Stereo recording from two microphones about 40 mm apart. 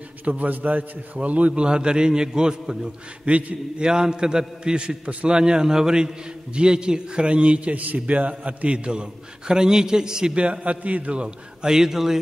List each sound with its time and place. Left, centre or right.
0.2 s a man's voice: right
1.5 s a man's voice: right
3.3 s a man's voice: right
3.8 s a man's voice: centre
10.3 s a man's voice: right
11.6 s a man's voice: centre